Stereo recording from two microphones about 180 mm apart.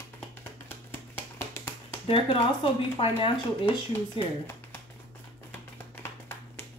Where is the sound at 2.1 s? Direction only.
30° left (ahead or behind).